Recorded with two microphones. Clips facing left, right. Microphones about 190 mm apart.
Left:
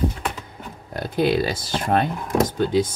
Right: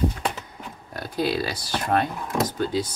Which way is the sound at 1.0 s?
20° left (ahead or behind).